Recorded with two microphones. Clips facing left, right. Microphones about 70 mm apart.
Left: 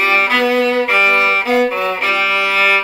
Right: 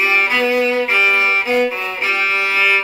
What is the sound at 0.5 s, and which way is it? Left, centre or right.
Music, left.